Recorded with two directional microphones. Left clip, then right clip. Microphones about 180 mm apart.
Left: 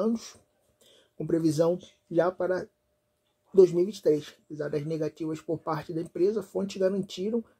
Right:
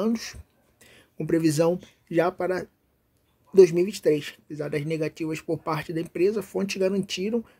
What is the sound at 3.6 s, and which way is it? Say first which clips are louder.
Speech: right 3 dB; 15° right (ahead or behind).